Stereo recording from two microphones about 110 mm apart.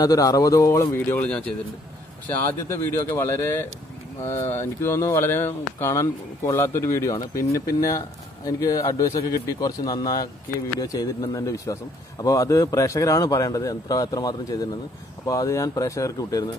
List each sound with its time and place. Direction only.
0.0 s speech: 35° left (ahead or behind)
2.2 s speech: 20° left (ahead or behind)